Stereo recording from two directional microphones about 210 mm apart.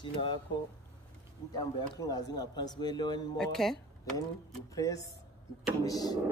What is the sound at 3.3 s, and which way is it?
Speech, centre (ahead or behind).